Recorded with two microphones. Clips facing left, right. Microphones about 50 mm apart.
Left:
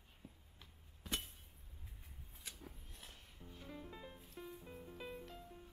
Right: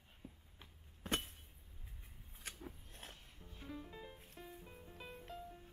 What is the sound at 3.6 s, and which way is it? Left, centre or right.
Music, centre.